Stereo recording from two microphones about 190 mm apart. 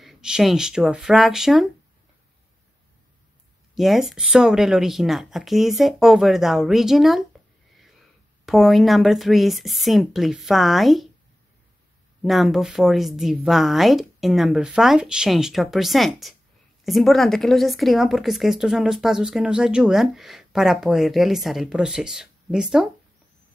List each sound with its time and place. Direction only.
0.0 s a woman's voice: centre (ahead or behind)
3.7 s a woman's voice: centre (ahead or behind)
8.5 s a woman's voice: centre (ahead or behind)
12.2 s a woman's voice: centre (ahead or behind)